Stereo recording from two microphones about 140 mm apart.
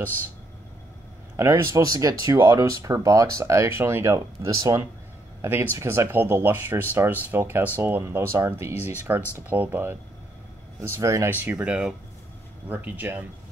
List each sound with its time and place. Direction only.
1.3 s speech: 20° right (ahead or behind)